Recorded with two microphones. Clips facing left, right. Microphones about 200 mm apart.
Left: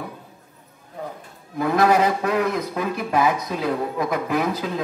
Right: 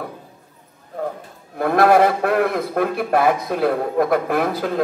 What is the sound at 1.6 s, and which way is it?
A man's voice, 55° right (ahead or behind).